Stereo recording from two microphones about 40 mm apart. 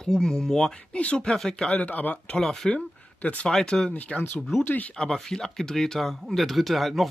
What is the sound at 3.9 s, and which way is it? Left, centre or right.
Speech, left.